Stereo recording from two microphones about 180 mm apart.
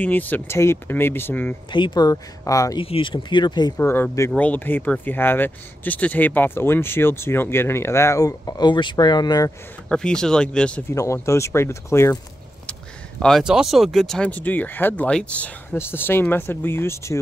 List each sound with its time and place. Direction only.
0.0 s speech: 10° left (ahead or behind)
1.7 s speech: 25° left (ahead or behind)
2.8 s speech: 30° left (ahead or behind)
9.8 s speech: 5° left (ahead or behind)
11.0 s speech: 15° left (ahead or behind)
13.2 s speech: centre (ahead or behind); by 17.2 s 15° left (ahead or behind)